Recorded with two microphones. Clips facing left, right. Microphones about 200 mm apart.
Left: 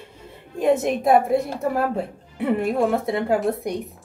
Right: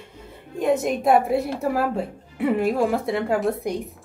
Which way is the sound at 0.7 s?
Centre (ahead or behind).